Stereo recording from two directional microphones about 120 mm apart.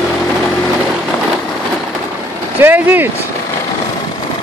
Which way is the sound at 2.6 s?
15° right (ahead or behind).